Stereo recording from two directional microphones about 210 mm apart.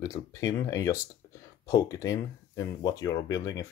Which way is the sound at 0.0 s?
15° left (ahead or behind).